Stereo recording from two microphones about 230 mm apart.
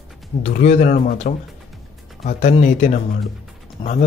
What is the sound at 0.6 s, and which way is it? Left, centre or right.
Speech, left.